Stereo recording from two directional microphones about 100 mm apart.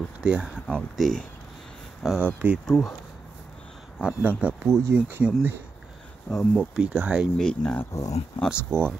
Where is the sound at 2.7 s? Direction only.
Centre (ahead or behind).